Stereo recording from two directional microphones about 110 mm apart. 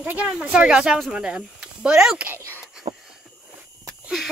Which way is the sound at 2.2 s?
20° right (ahead or behind).